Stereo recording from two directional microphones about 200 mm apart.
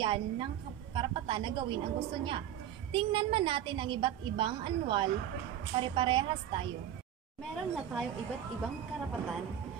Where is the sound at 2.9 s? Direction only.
25° right (ahead or behind).